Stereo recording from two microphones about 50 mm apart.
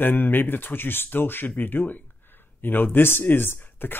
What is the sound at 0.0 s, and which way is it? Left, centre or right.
Speech, left.